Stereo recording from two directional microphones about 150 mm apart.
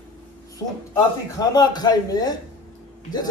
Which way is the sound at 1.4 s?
25° left (ahead or behind).